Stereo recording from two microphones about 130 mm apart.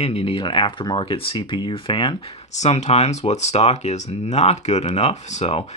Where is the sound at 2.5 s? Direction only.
60° left (ahead or behind).